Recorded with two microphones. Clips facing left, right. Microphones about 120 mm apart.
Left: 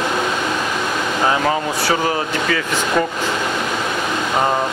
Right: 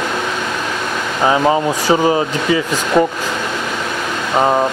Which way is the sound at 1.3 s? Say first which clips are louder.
Right 6 dB; 15° right (ahead or behind).